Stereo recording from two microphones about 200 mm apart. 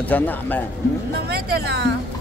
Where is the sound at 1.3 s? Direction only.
55° right (ahead or behind).